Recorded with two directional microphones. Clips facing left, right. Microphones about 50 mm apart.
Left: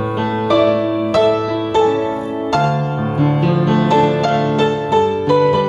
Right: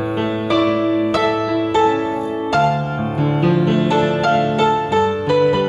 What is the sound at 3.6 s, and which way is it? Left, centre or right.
Music, centre.